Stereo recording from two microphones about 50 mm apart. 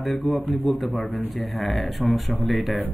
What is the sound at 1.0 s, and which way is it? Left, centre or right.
Speech, left.